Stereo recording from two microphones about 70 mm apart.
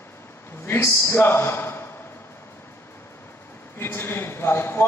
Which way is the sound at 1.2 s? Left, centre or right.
Left.